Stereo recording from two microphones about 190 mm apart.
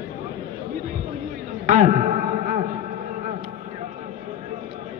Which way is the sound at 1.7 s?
40° right (ahead or behind).